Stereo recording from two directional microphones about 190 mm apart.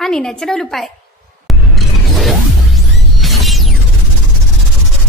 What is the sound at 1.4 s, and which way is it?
Music, centre (ahead or behind).